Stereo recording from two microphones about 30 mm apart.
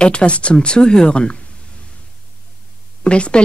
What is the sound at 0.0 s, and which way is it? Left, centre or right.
A woman's voice, left.